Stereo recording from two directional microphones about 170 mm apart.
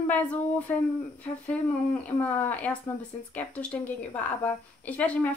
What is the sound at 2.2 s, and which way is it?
A woman's voice, 10° left (ahead or behind).